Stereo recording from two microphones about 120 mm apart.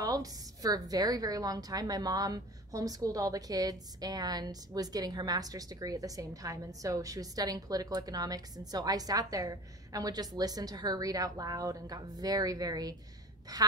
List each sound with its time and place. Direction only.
0.0 s a woman's voice: 30° right (ahead or behind)